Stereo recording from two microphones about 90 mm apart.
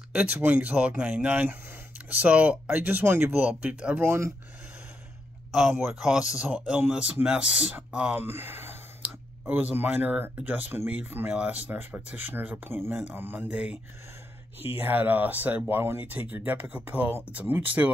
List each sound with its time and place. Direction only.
0.1 s speech: 15° right (ahead or behind)
4.0 s speech: 25° right (ahead or behind)
5.5 s speech: 5° right (ahead or behind)
8.2 s speech: 25° right (ahead or behind)
13.5 s speech: 15° right (ahead or behind)
14.8 s speech: 20° right (ahead or behind)